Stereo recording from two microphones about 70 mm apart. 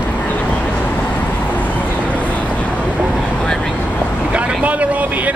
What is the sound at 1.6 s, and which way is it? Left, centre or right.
Vehicle, left.